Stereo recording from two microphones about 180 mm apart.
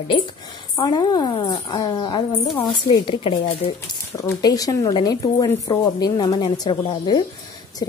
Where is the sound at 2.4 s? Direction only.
Centre (ahead or behind).